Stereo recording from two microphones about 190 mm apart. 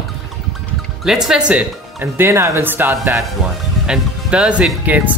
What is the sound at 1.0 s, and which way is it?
Speech, centre (ahead or behind).